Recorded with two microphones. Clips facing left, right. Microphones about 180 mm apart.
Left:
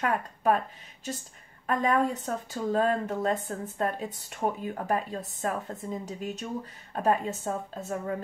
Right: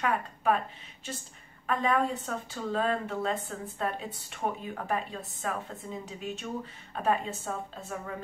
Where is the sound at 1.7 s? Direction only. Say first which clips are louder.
Left 2 dB; 40° left (ahead or behind).